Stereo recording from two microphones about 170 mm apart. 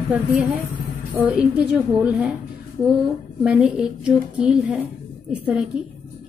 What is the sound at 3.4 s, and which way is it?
A woman's voice, 5° right (ahead or behind).